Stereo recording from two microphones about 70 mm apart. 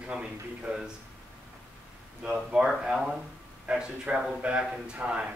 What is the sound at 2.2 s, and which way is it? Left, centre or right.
A man's voice, centre.